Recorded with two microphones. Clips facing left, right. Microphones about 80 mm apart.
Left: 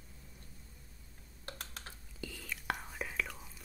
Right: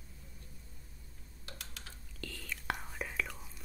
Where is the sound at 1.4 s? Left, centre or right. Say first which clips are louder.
Left 3 dB; left.